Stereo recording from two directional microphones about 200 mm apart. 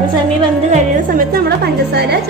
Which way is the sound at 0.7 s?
40° right (ahead or behind).